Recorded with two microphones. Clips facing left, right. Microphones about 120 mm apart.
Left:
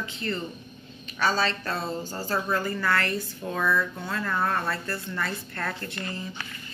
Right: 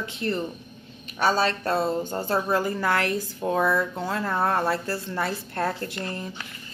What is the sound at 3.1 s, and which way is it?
Speech, 90° right.